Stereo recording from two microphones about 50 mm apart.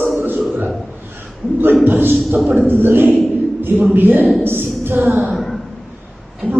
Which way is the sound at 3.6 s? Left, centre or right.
Right.